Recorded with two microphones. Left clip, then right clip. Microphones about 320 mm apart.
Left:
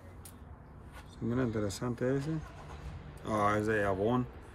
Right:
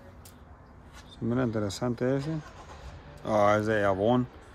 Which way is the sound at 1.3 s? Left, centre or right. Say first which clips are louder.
Right 4 dB; centre.